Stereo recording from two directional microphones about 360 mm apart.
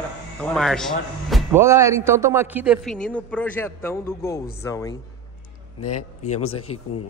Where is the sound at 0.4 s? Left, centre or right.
Centre.